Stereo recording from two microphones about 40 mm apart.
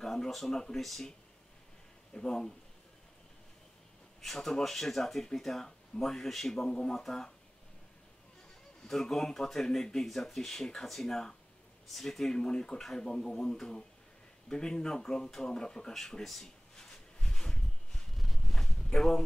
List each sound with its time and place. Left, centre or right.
0.0 s speech: centre
0.5 s speech: centre
0.7 s speech: centre
2.1 s speech: centre
4.2 s speech: centre
8.8 s speech: centre
12.4 s speech: centre
16.7 s a sound: centre